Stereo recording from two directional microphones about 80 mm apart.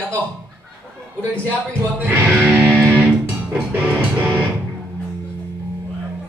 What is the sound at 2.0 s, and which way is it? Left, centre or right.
Music, right.